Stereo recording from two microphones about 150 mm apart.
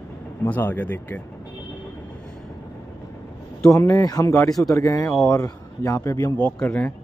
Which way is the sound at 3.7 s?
20° left (ahead or behind).